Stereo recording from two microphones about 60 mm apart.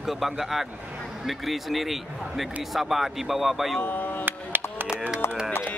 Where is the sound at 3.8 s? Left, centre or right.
Left.